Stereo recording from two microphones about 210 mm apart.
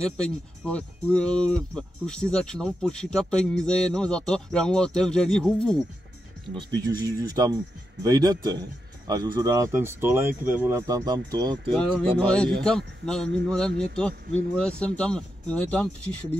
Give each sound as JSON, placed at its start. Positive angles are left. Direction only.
{"t": 0.0, "sound": "speech", "side_deg": 5}
{"t": 7.1, "sound": "a man's voice", "side_deg": -15}
{"t": 11.7, "sound": "speech", "side_deg": 5}